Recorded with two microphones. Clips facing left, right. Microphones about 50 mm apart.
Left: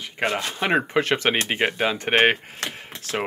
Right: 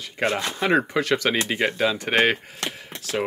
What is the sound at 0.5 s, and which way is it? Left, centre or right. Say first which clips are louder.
A man's voice: even; left.